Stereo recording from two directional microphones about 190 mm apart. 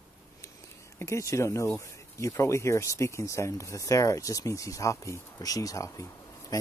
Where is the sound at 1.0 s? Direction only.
15° left (ahead or behind).